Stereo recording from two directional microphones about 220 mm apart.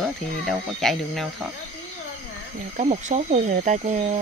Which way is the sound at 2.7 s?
30° right (ahead or behind).